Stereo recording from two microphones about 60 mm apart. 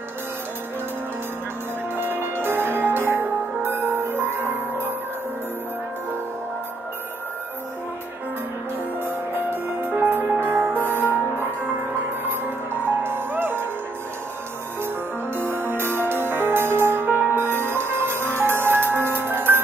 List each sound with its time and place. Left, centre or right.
2.0 s music: right
9.0 s music: right
9.9 s music: right
12.8 s music: right
15.3 s music: right